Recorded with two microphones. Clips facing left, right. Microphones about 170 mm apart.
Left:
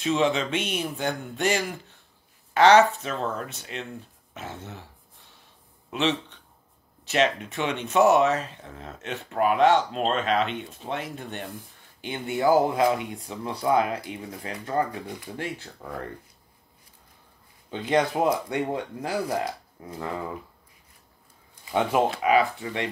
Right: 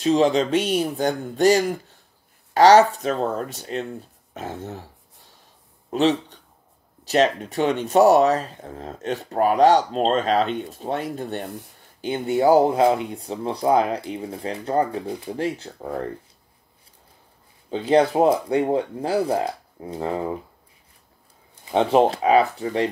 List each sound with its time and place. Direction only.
0.0 s speech: 35° right (ahead or behind)
5.9 s speech: 40° right (ahead or behind)
12.4 s speech: 25° right (ahead or behind)
17.6 s speech: 30° right (ahead or behind)
21.6 s speech: 30° right (ahead or behind)